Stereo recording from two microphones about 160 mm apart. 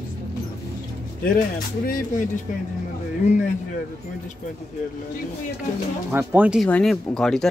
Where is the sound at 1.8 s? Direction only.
60° left (ahead or behind).